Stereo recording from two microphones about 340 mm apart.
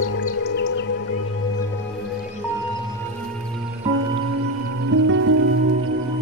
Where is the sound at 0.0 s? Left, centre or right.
Left.